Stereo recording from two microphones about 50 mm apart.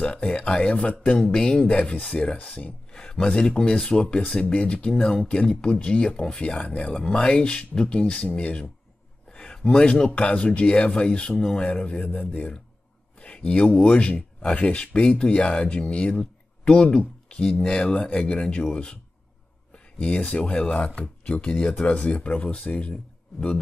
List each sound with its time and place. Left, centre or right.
0.0 s speech: left
6.9 s speech: centre